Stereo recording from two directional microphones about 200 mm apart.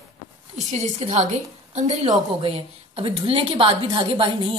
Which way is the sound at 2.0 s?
20° right (ahead or behind).